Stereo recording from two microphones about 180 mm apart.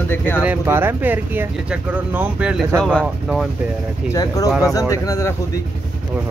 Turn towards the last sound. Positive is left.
turn(degrees=20)  # may be behind; listen again after turning